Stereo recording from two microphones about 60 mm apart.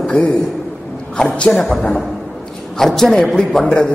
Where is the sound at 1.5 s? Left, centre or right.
Centre.